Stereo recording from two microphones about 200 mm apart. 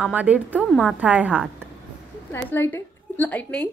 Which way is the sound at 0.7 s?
5° left (ahead or behind).